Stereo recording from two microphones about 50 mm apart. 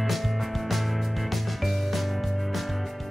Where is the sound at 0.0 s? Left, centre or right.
Centre.